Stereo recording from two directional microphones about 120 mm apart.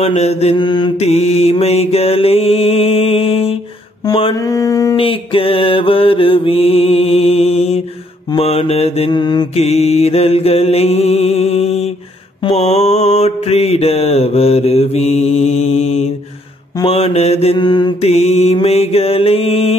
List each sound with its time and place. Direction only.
0.0 s mantra: 65° left (ahead or behind)
0.6 s mantra: 40° left (ahead or behind)
0.9 s mantra: 65° left (ahead or behind); by 4.4 s 40° left (ahead or behind)
4.4 s mantra: 30° left (ahead or behind)
4.9 s mantra: 50° left (ahead or behind)
9.1 s mantra: 40° left (ahead or behind)
9.6 s mantra: 60° left (ahead or behind)
17.6 s mantra: 35° left (ahead or behind)
18.0 s mantra: 65° left (ahead or behind)